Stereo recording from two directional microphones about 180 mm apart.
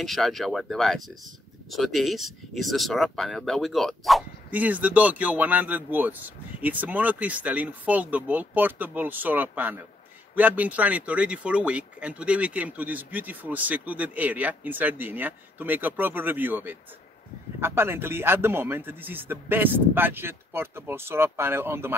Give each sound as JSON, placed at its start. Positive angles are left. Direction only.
{"t": 0.0, "sound": "speech", "side_deg": 0}